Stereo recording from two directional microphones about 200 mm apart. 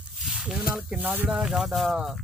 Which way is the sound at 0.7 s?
5° right (ahead or behind).